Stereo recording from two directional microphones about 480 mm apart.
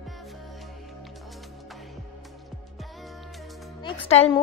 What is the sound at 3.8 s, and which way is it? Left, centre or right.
Music, centre.